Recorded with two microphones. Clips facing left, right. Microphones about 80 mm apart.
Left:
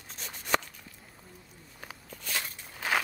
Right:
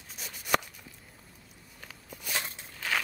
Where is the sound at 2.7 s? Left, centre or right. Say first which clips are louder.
Left 3 dB; left.